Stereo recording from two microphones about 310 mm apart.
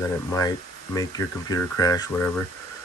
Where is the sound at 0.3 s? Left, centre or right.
Centre.